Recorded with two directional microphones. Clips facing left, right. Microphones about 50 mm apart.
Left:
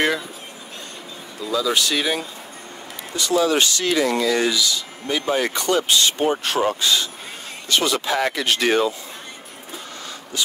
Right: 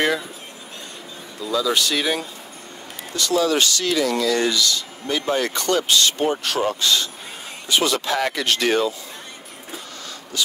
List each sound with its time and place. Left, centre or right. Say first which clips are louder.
1.4 s speech: even; centre
3.2 s speech: left 1 dB; centre
4.3 s speech: even; centre